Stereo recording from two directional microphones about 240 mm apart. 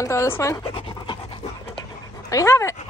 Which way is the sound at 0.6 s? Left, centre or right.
Left.